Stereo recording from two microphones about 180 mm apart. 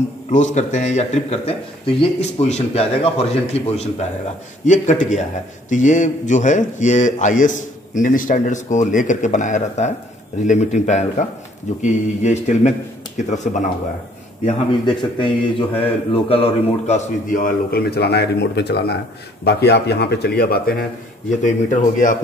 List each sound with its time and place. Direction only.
0.3 s speech: 40° left (ahead or behind)
15.0 s speech: 30° left (ahead or behind); by 20.7 s 60° left (ahead or behind)
21.4 s speech: 45° left (ahead or behind)